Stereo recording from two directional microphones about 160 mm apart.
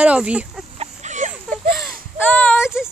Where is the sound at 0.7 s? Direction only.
50° right (ahead or behind).